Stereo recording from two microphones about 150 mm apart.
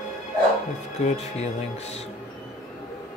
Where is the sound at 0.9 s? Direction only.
45° left (ahead or behind).